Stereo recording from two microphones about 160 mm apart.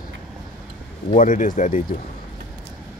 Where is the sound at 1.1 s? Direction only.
55° left (ahead or behind).